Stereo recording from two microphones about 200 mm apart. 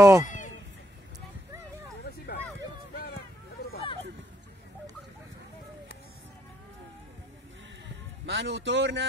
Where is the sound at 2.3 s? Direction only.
50° left (ahead or behind).